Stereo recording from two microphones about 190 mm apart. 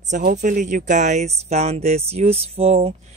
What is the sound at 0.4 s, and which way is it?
Speech, 40° right (ahead or behind).